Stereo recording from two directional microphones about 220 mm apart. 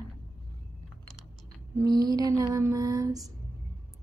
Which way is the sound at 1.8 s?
15° right (ahead or behind).